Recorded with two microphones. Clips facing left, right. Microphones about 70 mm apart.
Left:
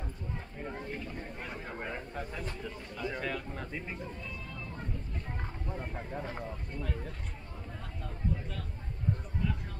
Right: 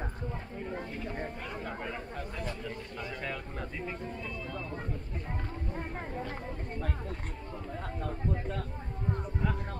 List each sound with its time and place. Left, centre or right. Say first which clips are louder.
1.0 s chatter: right 5 dB; right
1.8 s speech: even; centre
3.2 s speech: left 1 dB; centre